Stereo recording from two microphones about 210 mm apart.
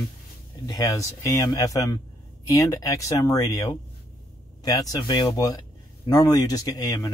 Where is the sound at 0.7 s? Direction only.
15° left (ahead or behind).